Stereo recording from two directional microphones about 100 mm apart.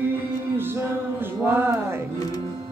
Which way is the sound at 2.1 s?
40° left (ahead or behind).